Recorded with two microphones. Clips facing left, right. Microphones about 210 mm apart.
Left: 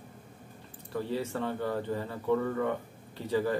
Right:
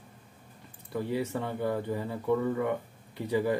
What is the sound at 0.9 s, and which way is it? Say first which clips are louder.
Speech: right 2 dB; 15° right (ahead or behind).